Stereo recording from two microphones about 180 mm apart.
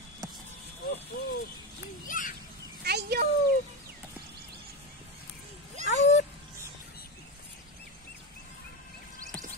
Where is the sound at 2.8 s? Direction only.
65° right (ahead or behind).